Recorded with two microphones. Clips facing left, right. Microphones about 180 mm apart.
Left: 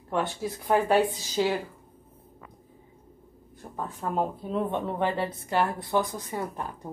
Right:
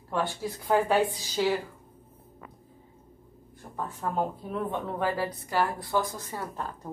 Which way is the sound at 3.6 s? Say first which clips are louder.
Left 3 dB; 10° left (ahead or behind).